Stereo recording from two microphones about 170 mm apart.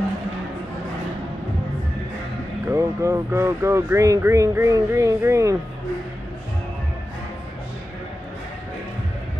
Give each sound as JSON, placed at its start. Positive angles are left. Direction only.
{"t": 2.7, "sound": "speech", "side_deg": -15}